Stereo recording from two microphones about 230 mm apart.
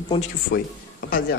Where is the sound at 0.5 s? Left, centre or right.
Left.